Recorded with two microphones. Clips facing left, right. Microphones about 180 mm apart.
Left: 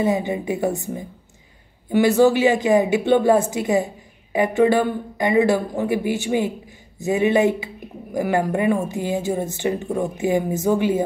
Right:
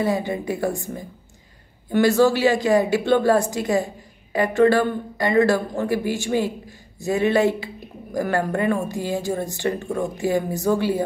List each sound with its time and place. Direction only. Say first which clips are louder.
0.0 s a woman's voice: left 2 dB; 15° left (ahead or behind)